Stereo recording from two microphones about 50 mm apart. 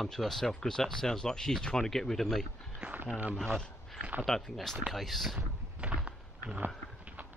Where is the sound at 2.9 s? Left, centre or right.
Right.